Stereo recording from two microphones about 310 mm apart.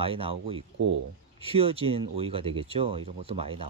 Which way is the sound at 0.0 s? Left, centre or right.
Centre.